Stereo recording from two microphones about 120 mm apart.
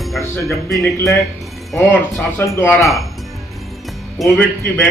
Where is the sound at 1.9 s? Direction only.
15° left (ahead or behind).